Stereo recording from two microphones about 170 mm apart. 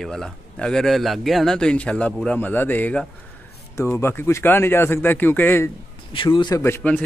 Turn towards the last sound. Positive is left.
turn(degrees=10)  # may be behind; listen again after turning